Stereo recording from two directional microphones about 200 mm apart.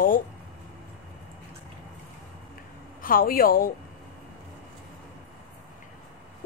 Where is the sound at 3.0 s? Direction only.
45° left (ahead or behind).